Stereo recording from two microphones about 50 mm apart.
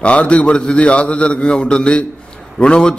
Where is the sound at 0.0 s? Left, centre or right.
Left.